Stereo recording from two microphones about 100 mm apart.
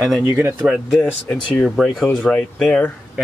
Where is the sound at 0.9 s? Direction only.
10° left (ahead or behind).